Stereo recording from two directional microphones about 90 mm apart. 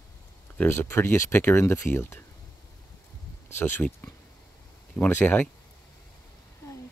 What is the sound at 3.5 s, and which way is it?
Speech, 20° left (ahead or behind).